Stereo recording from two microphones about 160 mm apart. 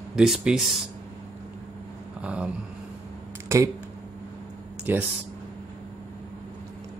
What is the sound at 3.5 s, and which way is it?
Mantra, 15° right (ahead or behind).